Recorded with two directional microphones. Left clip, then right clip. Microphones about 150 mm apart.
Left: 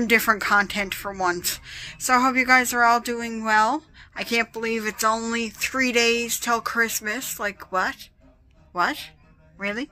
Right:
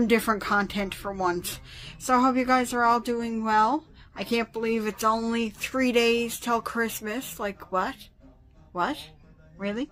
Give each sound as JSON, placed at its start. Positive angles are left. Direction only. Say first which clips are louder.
{"t": 0.0, "sound": "a woman's voice", "louder": "left 4 dB", "side_deg": -5}